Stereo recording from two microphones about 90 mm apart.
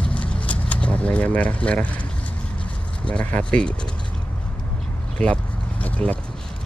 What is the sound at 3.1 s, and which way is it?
Speech, 15° left (ahead or behind).